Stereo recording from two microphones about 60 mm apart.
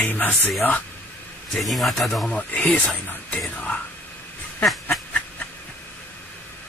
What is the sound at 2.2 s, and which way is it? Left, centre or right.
Speech, left.